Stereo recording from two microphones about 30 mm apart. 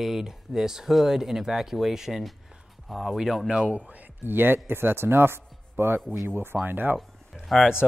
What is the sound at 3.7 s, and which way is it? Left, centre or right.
Speech, right.